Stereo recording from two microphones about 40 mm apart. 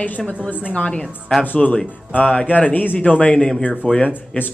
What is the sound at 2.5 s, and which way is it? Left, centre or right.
Speech, left.